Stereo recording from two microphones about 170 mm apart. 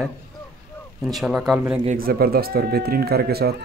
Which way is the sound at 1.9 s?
60° right (ahead or behind).